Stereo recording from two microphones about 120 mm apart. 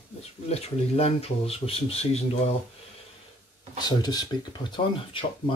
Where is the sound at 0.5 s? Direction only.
60° left (ahead or behind).